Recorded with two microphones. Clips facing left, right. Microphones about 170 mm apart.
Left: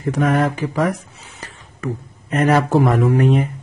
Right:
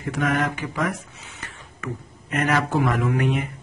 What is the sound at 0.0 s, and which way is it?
Speech, 35° left (ahead or behind).